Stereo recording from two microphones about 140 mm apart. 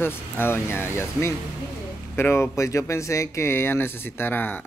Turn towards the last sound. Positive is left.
turn(degrees=15)  # may be behind; listen again after turning